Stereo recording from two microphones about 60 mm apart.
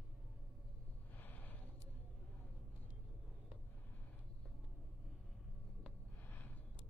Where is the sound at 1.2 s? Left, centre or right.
Left.